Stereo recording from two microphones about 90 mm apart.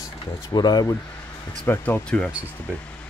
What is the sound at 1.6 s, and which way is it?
Speech, 20° left (ahead or behind).